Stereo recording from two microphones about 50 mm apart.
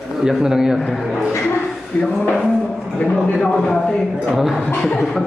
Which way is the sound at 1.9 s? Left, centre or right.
Left.